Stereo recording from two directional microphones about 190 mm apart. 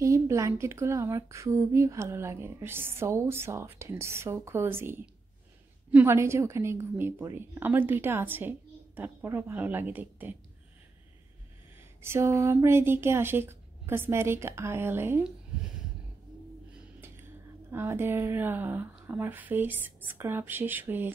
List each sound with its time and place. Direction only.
0.0 s speech: 15° right (ahead or behind)
12.0 s speech: 15° right (ahead or behind)
16.7 s speech: 10° right (ahead or behind)